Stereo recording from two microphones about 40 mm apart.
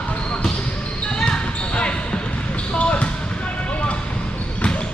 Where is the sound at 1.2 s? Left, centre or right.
Left.